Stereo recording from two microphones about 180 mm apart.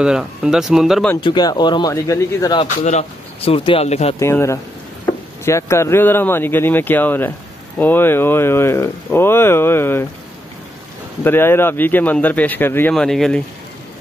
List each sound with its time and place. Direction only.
0.0 s speech: 5° right (ahead or behind)
1.1 s speech: 25° left (ahead or behind)
2.8 s speech: 40° left (ahead or behind)
4.2 s speech: 15° left (ahead or behind)
11.2 s speech: 10° left (ahead or behind)